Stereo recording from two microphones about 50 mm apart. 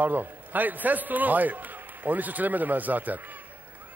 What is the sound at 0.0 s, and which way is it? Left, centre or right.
A man's voice, right.